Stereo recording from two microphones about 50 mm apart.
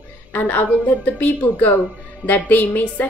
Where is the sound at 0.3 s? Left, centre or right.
Left.